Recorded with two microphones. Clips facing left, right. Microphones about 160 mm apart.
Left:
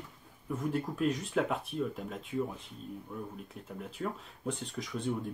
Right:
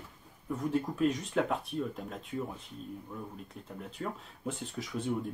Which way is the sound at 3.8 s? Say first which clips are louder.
Left 1 dB; centre (ahead or behind).